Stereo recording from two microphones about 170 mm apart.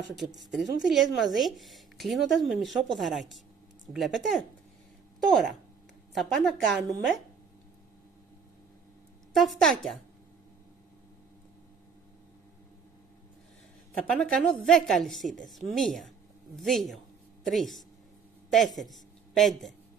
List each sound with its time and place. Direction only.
0.2 s speech: centre (ahead or behind)
9.3 s speech: centre (ahead or behind)
14.0 s speech: 5° left (ahead or behind)